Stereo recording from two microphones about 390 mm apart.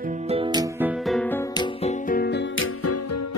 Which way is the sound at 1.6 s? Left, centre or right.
Centre.